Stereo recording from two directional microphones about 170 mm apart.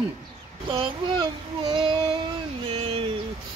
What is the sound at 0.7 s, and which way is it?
Speech, 30° right (ahead or behind).